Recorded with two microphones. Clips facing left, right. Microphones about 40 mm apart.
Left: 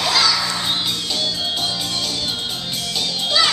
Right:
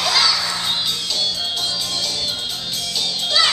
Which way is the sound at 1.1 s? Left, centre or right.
Centre.